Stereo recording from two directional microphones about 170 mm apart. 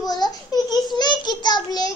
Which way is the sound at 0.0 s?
25° left (ahead or behind).